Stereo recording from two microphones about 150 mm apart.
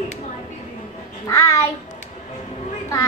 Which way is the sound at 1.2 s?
20° left (ahead or behind).